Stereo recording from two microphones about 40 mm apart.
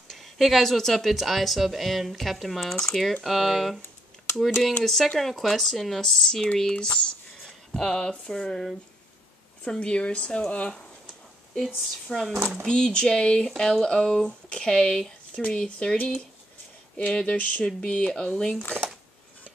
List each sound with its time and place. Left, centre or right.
0.1 s speech: centre
4.8 s speech: centre
7.4 s a sound: centre
8.3 s speech: centre
9.7 s speech: left
11.5 s speech: centre
12.6 s speech: centre